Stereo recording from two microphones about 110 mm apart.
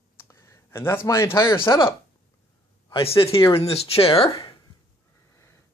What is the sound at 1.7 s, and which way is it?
Speech, 30° left (ahead or behind).